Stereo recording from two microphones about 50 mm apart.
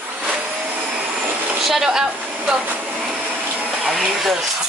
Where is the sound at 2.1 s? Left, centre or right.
Right.